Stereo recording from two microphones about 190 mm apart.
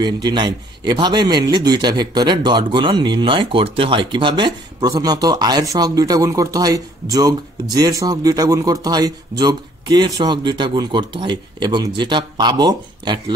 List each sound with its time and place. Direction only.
0.0 s a man's voice: 25° right (ahead or behind)